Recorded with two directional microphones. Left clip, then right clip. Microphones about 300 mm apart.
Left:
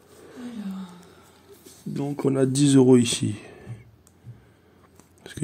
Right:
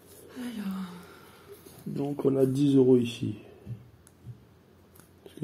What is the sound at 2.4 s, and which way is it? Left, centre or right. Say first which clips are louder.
Speech: left 6 dB; left.